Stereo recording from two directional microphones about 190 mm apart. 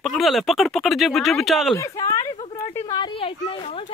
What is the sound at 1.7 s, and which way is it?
Speech, 15° left (ahead or behind).